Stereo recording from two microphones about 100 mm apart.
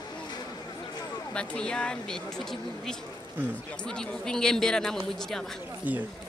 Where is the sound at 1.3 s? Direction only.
10° left (ahead or behind).